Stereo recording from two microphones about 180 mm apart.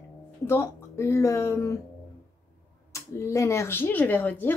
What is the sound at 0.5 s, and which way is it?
A woman's voice, 15° left (ahead or behind).